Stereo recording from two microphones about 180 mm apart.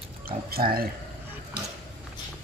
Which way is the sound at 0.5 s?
55° right (ahead or behind).